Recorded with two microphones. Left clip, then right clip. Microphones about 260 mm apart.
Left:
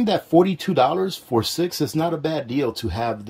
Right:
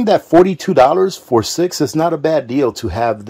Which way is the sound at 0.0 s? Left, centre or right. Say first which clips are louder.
Right 7 dB; centre.